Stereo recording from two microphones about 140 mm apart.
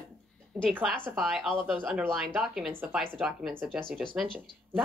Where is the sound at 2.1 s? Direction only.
Centre (ahead or behind).